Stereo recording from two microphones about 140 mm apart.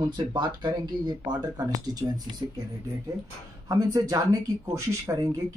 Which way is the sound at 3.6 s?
25° right (ahead or behind).